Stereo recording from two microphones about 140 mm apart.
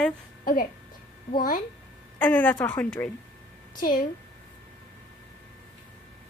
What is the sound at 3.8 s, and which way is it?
Speech, 70° left (ahead or behind).